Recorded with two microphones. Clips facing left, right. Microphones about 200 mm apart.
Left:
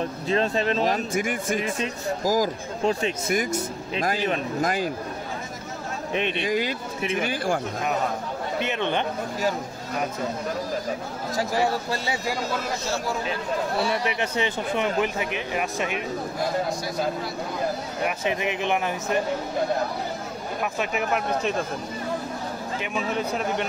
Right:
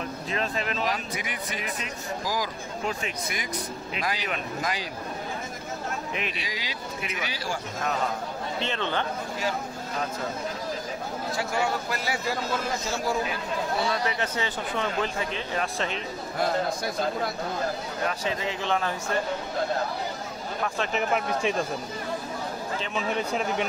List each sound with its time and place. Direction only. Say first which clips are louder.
0.3 s speech: left 8 dB; 30° left (ahead or behind)
0.8 s speech: left 7 dB; 45° left (ahead or behind)
2.8 s speech: left 8 dB; 30° left (ahead or behind)
3.3 s speech: left 8 dB; 45° left (ahead or behind)
6.4 s speech: left 11 dB; 55° left (ahead or behind)
8.5 s speech: left 4 dB; 15° left (ahead or behind)
11.3 s speech: left 5 dB; 35° left (ahead or behind)
13.8 s speech: left 2 dB; 20° left (ahead or behind)
18.0 s speech: left 3 dB; 20° left (ahead or behind)
20.6 s speech: left 1 dB; 10° left (ahead or behind)
23.1 s speech: left 1 dB; centre (ahead or behind)